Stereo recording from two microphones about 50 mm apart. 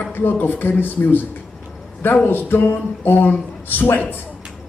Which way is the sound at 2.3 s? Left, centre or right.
Left.